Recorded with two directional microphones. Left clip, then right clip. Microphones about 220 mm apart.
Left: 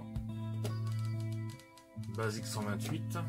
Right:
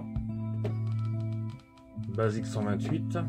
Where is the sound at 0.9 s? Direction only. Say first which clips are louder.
Right 5 dB; 40° left (ahead or behind).